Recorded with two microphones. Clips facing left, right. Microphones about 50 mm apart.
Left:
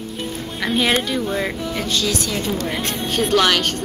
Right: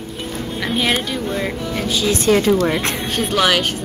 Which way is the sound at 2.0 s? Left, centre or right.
Right.